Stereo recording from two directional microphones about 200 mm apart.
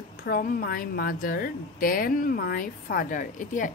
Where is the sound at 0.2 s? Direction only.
45° left (ahead or behind).